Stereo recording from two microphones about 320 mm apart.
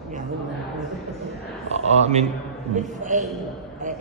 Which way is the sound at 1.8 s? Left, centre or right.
Centre.